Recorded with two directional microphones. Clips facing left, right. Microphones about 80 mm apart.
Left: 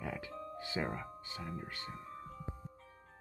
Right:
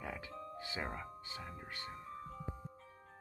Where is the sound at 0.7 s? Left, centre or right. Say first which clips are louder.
Left 5 dB; centre.